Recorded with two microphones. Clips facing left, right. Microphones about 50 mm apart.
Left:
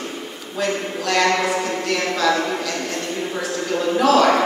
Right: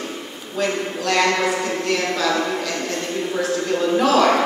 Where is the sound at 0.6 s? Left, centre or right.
Centre.